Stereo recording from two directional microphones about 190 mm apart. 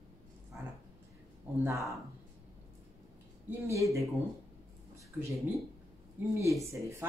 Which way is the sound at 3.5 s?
15° right (ahead or behind).